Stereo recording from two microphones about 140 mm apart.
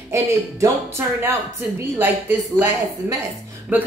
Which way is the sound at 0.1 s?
20° right (ahead or behind).